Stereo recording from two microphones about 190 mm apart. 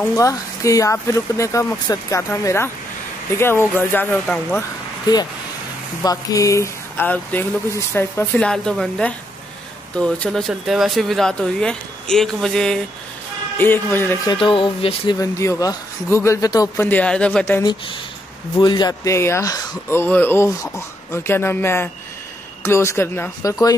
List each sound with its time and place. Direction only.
0.1 s speech: 15° left (ahead or behind)
14.3 s speech: 25° left (ahead or behind)
15.1 s speech: 15° left (ahead or behind)
18.6 s speech: 25° left (ahead or behind)